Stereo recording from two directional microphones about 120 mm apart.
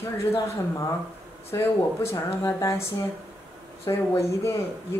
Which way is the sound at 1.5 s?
20° left (ahead or behind).